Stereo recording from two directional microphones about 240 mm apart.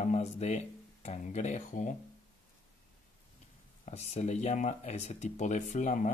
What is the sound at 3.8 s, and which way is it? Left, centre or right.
Speech, left.